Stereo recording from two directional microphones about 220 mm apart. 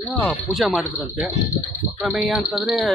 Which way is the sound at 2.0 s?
5° right (ahead or behind).